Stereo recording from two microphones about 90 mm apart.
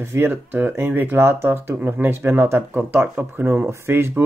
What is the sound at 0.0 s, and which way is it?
Speech, 30° right (ahead or behind).